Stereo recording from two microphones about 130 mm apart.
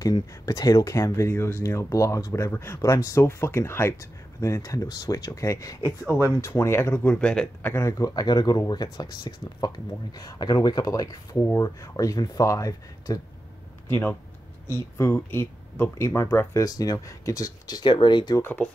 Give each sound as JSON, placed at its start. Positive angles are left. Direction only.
{"t": 0.0, "sound": "speech", "side_deg": 25}
{"t": 5.9, "sound": "speech", "side_deg": -15}
{"t": 6.2, "sound": "speech", "side_deg": 25}
{"t": 7.2, "sound": "speech", "side_deg": 5}
{"t": 7.7, "sound": "speech", "side_deg": 25}
{"t": 13.8, "sound": "speech", "side_deg": 15}
{"t": 18.4, "sound": "speech", "side_deg": 15}